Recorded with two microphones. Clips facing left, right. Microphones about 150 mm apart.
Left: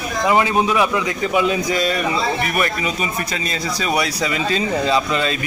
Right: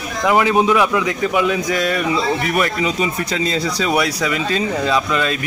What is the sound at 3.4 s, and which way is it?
Speech, 90° right.